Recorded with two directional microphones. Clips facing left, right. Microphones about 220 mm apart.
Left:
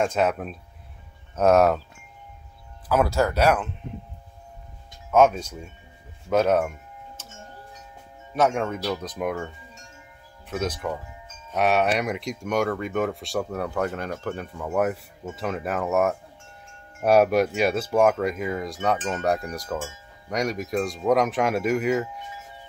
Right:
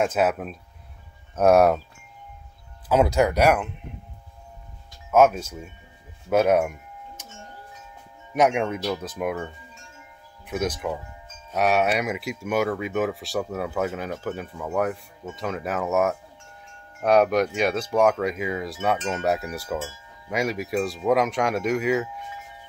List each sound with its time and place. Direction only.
0.0 s chink: 5° right (ahead or behind)
1.3 s speech: 10° right (ahead or behind)
2.9 s speech: 20° right (ahead or behind)
5.1 s chink: 5° right (ahead or behind)
6.2 s wind chime: 10° right (ahead or behind)
8.4 s speech: 15° right (ahead or behind)
8.9 s chink: 5° right (ahead or behind)
10.4 s speech: 10° right (ahead or behind)
11.5 s chink: centre (ahead or behind)
17.0 s speech: 5° left (ahead or behind)
17.6 s chink: 5° left (ahead or behind)